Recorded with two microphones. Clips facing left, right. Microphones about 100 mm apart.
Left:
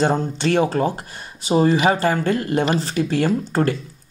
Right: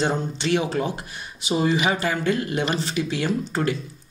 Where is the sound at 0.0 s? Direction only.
45° left (ahead or behind).